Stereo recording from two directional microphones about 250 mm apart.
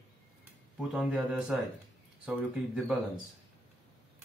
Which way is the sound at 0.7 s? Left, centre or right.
Centre.